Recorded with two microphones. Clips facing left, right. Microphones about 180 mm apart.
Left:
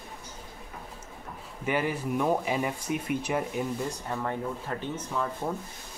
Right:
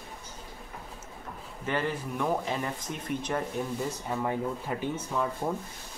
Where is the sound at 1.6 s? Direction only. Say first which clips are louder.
Left 2 dB; 10° left (ahead or behind).